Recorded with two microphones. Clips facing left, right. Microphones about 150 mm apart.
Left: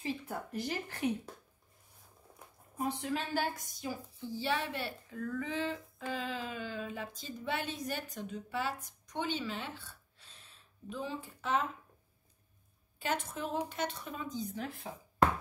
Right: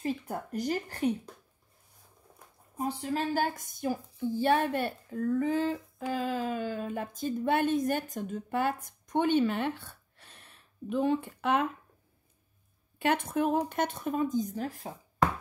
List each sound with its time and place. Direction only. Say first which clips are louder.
0.0 s speech: right 5 dB; 50° right (ahead or behind)
2.8 s a woman's voice: right 4 dB; 35° right (ahead or behind); by 11.6 s 60° right (ahead or behind)
13.0 s a woman's voice: right 9 dB; 60° right (ahead or behind); by 15.0 s 40° right (ahead or behind)